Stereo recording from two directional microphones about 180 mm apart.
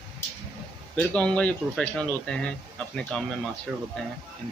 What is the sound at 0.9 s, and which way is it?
Speech, 5° left (ahead or behind).